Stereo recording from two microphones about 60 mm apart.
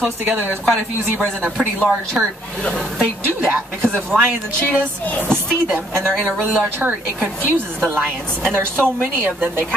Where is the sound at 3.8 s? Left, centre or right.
Centre.